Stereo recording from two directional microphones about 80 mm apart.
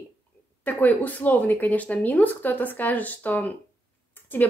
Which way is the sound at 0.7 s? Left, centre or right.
Left.